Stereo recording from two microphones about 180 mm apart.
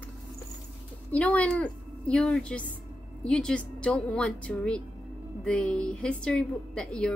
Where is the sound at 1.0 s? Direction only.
10° left (ahead or behind).